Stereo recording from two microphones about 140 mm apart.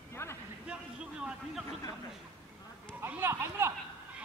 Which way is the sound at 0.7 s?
5° right (ahead or behind).